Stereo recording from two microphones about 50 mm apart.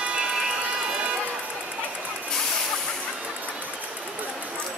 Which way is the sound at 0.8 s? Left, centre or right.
Centre.